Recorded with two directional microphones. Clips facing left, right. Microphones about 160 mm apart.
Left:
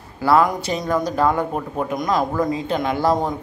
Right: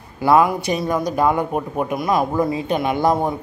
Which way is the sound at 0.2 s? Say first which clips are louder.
Right 2 dB; 15° right (ahead or behind).